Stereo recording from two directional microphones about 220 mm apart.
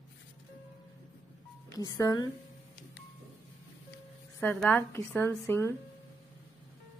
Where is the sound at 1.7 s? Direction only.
15° left (ahead or behind).